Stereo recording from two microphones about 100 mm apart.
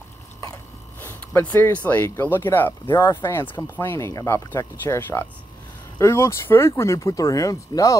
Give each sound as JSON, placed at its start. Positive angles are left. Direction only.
{"t": 1.0, "sound": "speech", "side_deg": 20}